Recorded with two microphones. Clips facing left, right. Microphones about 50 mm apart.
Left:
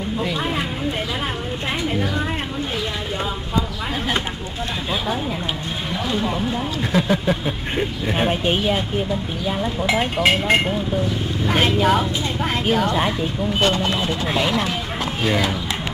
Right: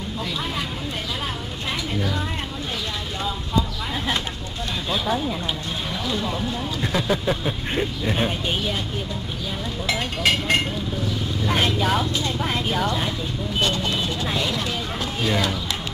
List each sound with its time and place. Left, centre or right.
0.2 s a sound: left
6.0 s speech: left
9.8 s speech: left